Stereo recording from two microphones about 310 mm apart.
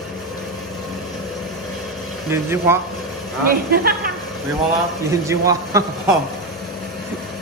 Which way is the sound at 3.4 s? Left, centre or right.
Right.